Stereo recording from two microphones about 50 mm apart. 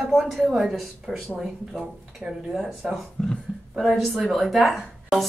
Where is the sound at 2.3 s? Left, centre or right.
Centre.